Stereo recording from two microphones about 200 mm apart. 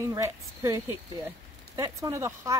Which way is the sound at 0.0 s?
15° right (ahead or behind).